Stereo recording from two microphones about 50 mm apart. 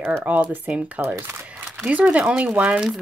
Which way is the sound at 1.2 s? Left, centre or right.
Right.